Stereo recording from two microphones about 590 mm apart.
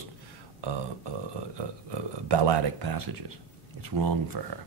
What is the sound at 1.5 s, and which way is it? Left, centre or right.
Speech, right.